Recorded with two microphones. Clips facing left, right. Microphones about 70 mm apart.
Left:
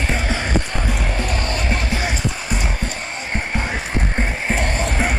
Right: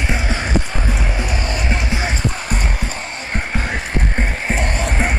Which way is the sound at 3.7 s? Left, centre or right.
Centre.